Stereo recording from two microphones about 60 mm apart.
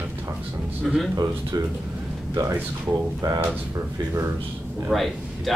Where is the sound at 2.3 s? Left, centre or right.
Right.